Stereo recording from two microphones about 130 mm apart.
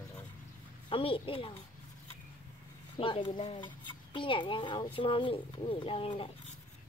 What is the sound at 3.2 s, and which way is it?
Speech, 55° left (ahead or behind).